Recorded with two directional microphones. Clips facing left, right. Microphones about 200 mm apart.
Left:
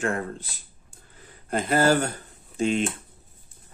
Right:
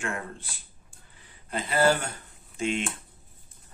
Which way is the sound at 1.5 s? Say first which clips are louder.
Left 3 dB; 45° left (ahead or behind).